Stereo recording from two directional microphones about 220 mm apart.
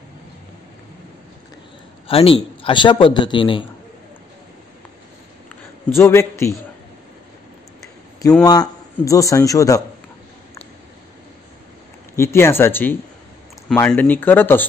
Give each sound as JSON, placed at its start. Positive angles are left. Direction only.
{"t": 2.0, "sound": "a man's voice", "side_deg": 25}
{"t": 5.9, "sound": "speech", "side_deg": 10}
{"t": 8.5, "sound": "speech", "side_deg": 15}
{"t": 12.2, "sound": "speech", "side_deg": 10}